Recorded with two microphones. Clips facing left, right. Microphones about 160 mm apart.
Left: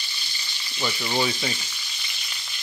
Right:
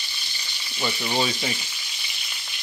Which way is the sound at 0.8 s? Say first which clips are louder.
Even; 15° right (ahead or behind).